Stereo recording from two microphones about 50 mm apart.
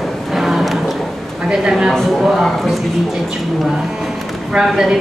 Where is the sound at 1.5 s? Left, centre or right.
Centre.